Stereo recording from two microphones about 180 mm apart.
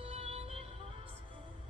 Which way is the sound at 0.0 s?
30° right (ahead or behind).